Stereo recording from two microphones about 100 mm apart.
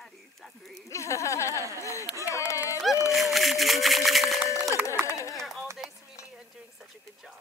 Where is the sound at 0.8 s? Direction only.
30° left (ahead or behind).